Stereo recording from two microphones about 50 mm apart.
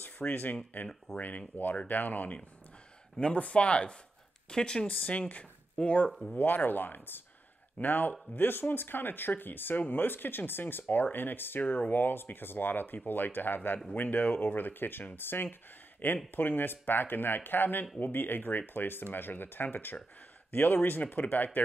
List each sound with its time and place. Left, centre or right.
0.2 s speech: left
1.1 s speech: left
1.5 s speech: left
3.2 s speech: left
4.8 s speech: left
6.3 s speech: left